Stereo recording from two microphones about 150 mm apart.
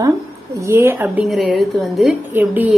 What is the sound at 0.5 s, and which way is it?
A woman's voice, 15° right (ahead or behind).